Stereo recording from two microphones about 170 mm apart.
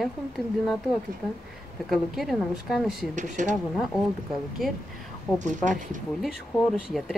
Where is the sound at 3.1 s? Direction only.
45° right (ahead or behind).